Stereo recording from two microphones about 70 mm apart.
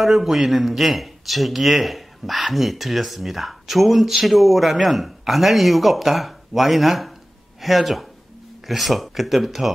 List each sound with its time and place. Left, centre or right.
0.0 s speech: centre